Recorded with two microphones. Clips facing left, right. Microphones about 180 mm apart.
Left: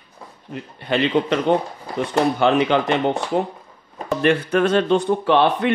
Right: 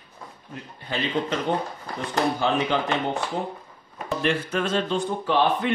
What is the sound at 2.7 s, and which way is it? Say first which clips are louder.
Speech: left 6 dB; 70° left (ahead or behind).